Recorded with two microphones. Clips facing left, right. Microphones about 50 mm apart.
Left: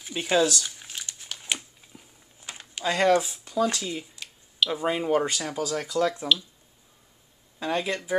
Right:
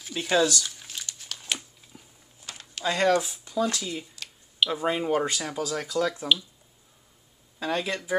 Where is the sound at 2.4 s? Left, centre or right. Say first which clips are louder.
Left 1 dB; left.